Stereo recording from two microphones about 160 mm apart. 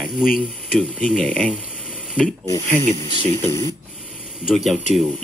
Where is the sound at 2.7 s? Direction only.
50° right (ahead or behind).